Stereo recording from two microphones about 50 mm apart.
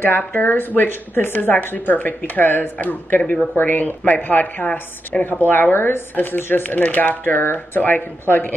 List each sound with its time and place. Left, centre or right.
0.0 s a woman's voice: left
3.2 s speech: left
3.5 s speech: left